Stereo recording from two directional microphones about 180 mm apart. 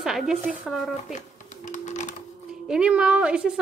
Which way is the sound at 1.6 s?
40° left (ahead or behind).